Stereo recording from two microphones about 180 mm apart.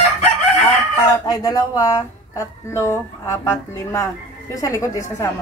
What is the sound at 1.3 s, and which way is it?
Speech, 20° left (ahead or behind).